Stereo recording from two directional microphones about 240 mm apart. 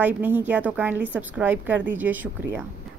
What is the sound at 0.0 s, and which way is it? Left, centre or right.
A woman's voice, centre.